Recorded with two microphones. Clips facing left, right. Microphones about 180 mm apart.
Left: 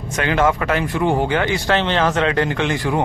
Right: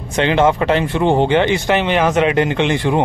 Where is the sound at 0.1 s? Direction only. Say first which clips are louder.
Right 4 dB; 25° right (ahead or behind).